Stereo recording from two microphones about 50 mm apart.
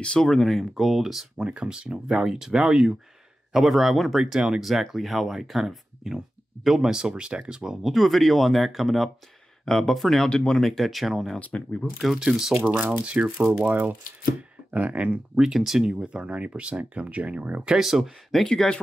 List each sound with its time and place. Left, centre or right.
0.0 s speech: centre
1.4 s speech: centre
3.5 s speech: centre
7.8 s speech: centre
10.3 s speech: centre
10.6 s speech: centre
11.3 s speech: left
12.0 s speech: centre
13.0 s speech: right
13.7 s speech: right
15.3 s speech: centre; by 17.6 s right
17.6 s speech: centre
18.4 s speech: centre